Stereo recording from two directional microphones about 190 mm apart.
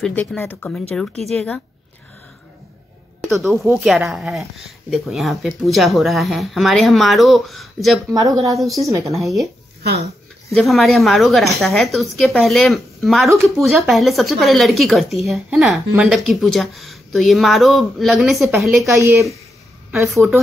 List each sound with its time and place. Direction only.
0.0 s speech: 5° left (ahead or behind)
3.2 s speech: centre (ahead or behind)
8.1 s speech: 20° right (ahead or behind)
8.5 s speech: centre (ahead or behind)
8.8 s speech: 15° right (ahead or behind)
9.1 s speech: centre (ahead or behind)
10.5 s speech: centre (ahead or behind)
18.9 s speech: 15° right (ahead or behind)
20.1 s speech: centre (ahead or behind)